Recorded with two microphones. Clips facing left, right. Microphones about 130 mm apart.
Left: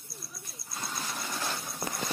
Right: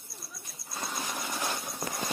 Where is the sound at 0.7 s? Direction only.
20° right (ahead or behind).